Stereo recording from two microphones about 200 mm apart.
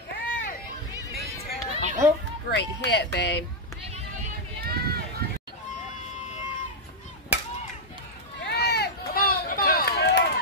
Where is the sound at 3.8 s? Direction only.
30° right (ahead or behind).